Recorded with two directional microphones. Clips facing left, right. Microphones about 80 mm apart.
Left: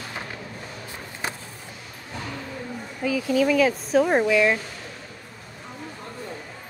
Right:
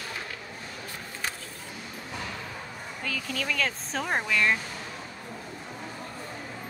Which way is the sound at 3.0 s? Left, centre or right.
Centre.